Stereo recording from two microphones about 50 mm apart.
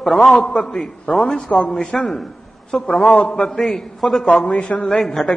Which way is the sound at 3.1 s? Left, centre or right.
Left.